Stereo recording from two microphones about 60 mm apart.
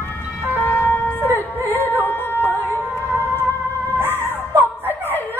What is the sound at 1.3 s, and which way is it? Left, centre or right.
Music, left.